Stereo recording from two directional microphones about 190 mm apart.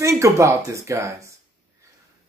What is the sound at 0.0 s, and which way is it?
A man's voice, 15° right (ahead or behind).